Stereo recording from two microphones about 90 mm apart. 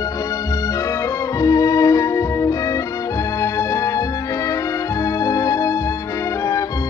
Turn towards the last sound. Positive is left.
turn(degrees=40)  # may be behind; listen again after turning